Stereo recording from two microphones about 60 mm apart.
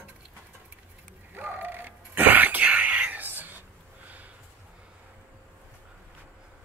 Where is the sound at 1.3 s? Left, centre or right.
Right.